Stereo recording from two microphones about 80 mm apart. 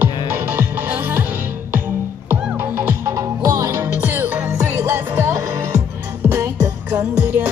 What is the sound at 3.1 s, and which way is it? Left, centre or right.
Music, right.